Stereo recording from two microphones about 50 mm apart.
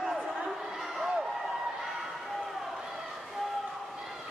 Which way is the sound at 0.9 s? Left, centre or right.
Centre.